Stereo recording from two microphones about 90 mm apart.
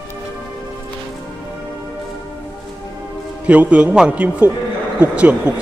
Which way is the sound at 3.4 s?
15° right (ahead or behind).